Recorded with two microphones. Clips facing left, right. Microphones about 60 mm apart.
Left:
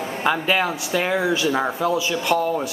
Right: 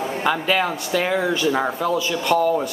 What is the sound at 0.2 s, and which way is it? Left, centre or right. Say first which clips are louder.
A man's voice: left 1 dB; centre.